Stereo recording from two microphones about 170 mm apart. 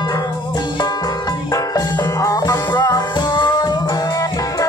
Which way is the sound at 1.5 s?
20° left (ahead or behind).